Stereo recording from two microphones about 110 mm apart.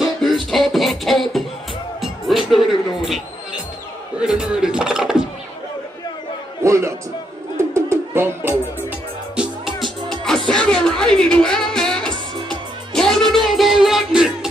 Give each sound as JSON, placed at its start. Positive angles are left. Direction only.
{"t": 0.0, "sound": "music", "side_deg": 0}
{"t": 4.2, "sound": "a sound", "side_deg": -10}
{"t": 6.6, "sound": "a sound", "side_deg": -25}
{"t": 7.5, "sound": "music", "side_deg": -25}
{"t": 9.3, "sound": "music", "side_deg": -5}
{"t": 10.5, "sound": "music", "side_deg": 10}